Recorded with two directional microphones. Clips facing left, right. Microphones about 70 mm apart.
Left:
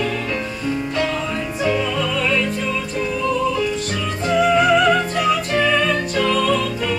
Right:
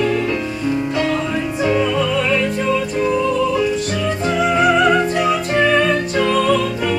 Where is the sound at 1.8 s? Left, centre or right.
Centre.